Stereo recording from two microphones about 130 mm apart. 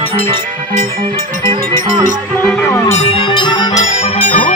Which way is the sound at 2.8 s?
55° left (ahead or behind).